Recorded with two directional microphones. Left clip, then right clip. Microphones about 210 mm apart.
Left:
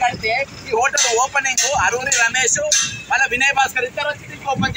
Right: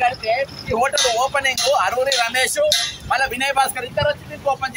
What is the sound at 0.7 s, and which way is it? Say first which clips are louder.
Speech: left 1 dB; 25° right (ahead or behind).